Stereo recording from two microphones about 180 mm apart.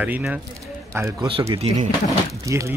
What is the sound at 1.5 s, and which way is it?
Speech, 35° right (ahead or behind).